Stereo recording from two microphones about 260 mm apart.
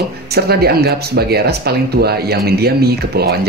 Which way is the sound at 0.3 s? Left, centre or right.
Right.